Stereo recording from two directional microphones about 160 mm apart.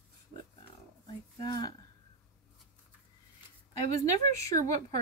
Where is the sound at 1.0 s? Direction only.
25° left (ahead or behind).